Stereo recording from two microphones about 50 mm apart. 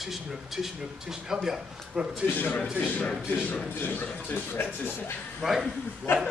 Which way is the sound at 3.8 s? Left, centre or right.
Left.